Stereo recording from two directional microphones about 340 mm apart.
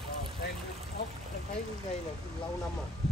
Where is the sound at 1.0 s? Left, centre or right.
Left.